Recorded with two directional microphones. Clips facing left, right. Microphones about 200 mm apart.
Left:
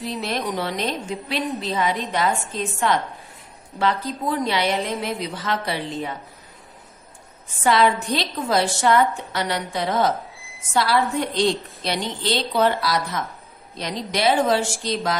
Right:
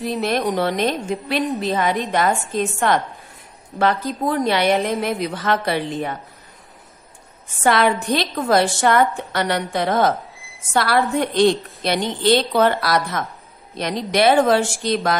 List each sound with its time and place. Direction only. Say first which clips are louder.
0.1 s a woman's voice: right 6 dB; 55° right (ahead or behind)
7.6 s a woman's voice: right 1 dB; 55° right (ahead or behind)